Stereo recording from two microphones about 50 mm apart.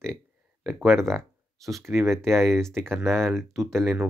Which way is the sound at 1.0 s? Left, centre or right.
Centre.